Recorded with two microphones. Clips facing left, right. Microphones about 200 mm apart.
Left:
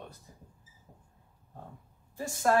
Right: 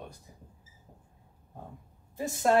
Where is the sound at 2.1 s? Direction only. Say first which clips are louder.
Right 2 dB; 20° right (ahead or behind).